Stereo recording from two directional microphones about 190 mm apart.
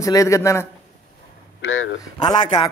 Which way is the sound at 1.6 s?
90° left.